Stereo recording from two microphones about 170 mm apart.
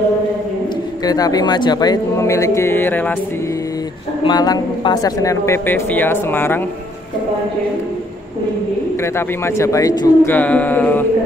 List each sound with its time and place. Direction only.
1.0 s speech: 20° left (ahead or behind)
4.2 s speech: 25° left (ahead or behind)
9.0 s speech: 15° left (ahead or behind)